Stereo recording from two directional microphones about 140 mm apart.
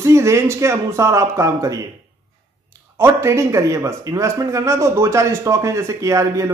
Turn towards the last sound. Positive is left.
turn(degrees=-20)  # may be behind; listen again after turning